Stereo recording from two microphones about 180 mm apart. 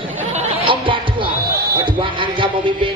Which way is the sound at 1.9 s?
30° right (ahead or behind).